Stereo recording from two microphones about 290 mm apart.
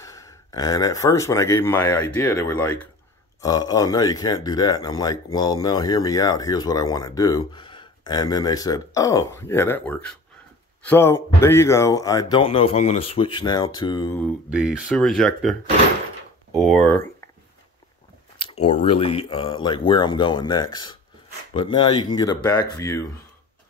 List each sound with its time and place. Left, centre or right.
0.0 s speech: centre
16.8 s speech: centre
18.4 s speech: centre